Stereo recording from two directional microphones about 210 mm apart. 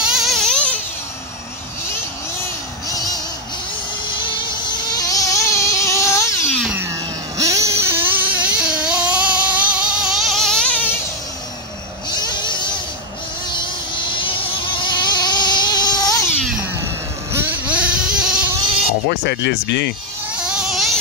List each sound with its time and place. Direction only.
0.0 s a sound: centre (ahead or behind)
2.9 s vehicle: 15° left (ahead or behind)
4.2 s vehicle: 20° left (ahead or behind)
6.6 s a sound: 10° right (ahead or behind)
7.3 s vehicle: 15° right (ahead or behind); by 11.0 s 5° left (ahead or behind)
12.1 s vehicle: 20° left (ahead or behind)
17.3 s vehicle: 10° right (ahead or behind)
19.0 s speech: 50° left (ahead or behind)
20.3 s vehicle: 5° right (ahead or behind)